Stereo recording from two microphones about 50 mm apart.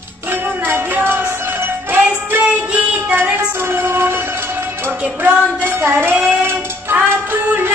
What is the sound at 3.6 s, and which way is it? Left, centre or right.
Music, right.